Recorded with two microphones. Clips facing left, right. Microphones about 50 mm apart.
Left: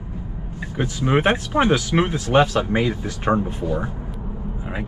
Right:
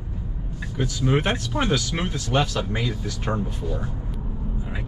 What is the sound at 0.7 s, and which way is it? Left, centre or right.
Speech, left.